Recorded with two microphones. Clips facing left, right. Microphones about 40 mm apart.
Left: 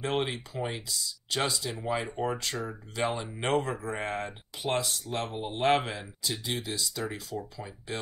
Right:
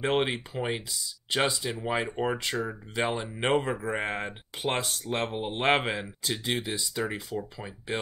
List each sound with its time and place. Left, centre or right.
0.0 s speech: right